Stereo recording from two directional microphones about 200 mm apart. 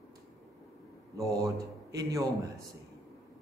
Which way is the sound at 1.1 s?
15° right (ahead or behind).